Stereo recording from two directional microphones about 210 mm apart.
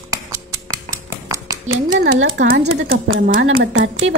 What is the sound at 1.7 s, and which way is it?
Speech, 65° right (ahead or behind).